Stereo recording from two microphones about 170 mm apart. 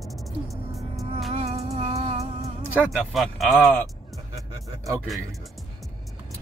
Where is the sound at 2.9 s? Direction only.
Centre (ahead or behind).